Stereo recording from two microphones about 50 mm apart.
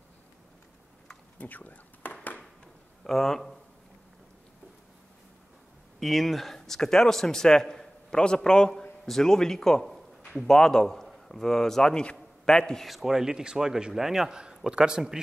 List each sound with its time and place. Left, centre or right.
1.4 s speech: left
3.0 s speech: centre
5.9 s a man's voice: centre
12.8 s a man's voice: centre